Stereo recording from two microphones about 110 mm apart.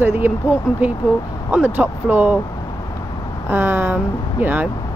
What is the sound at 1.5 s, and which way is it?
Speech, 15° right (ahead or behind).